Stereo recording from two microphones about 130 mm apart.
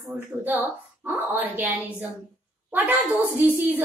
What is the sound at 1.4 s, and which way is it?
A woman's voice, 15° right (ahead or behind).